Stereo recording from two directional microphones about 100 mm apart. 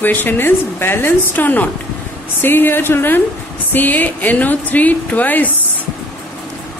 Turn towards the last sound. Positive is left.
turn(degrees=15)  # may be behind; listen again after turning